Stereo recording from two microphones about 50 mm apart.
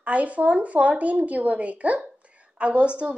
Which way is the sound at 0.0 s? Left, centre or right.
Right.